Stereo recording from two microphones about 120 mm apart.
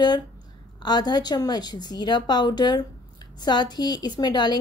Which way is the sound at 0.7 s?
35° left (ahead or behind).